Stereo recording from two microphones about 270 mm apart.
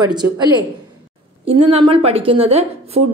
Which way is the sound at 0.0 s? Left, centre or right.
Centre.